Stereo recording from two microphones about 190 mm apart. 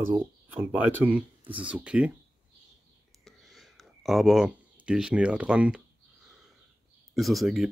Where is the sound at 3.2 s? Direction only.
Centre (ahead or behind).